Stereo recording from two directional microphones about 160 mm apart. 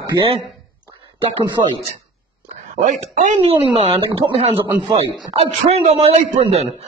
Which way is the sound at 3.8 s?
35° right (ahead or behind).